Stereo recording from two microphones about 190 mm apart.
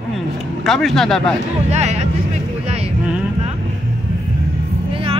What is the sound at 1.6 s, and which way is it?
Speech, 35° right (ahead or behind).